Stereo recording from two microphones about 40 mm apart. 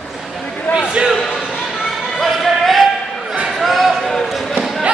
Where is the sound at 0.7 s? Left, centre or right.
Right.